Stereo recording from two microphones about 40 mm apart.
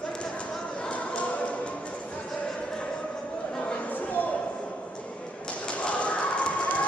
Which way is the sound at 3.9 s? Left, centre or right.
Left.